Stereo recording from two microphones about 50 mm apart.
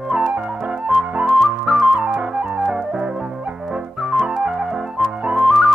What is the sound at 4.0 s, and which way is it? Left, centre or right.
Flute, centre.